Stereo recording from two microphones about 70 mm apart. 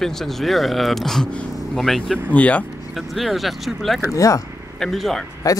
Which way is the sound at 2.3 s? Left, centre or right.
Left.